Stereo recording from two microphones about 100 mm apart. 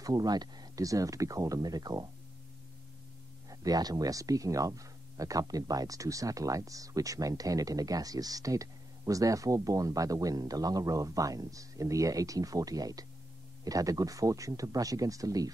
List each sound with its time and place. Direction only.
0.0 s speech: 40° right (ahead or behind)
3.4 s speech: 40° right (ahead or behind)